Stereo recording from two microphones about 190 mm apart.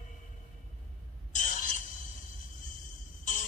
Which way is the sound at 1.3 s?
45° left (ahead or behind).